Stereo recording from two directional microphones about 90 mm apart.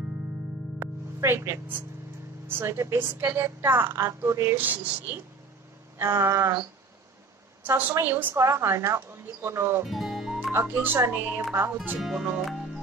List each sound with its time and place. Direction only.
0.7 s music: 25° right (ahead or behind)
2.4 s a woman's voice: 25° right (ahead or behind)
4.6 s speech: 20° right (ahead or behind)
5.9 s a sound: 30° right (ahead or behind)
7.6 s a woman's voice: 20° right (ahead or behind)
9.8 s music: centre (ahead or behind)
10.5 s a woman's voice: 25° right (ahead or behind)
12.0 s speech: 5° right (ahead or behind)